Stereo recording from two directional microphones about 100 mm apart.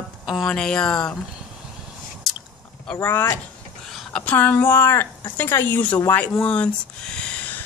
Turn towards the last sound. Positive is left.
turn(degrees=15)  # may be behind; listen again after turning